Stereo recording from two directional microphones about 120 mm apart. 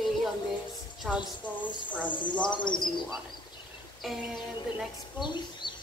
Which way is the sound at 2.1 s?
40° left (ahead or behind).